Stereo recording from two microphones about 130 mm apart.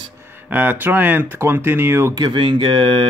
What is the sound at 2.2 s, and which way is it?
Speech, 35° right (ahead or behind).